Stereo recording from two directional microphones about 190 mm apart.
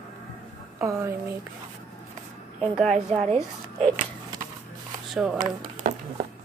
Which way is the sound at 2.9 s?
35° right (ahead or behind).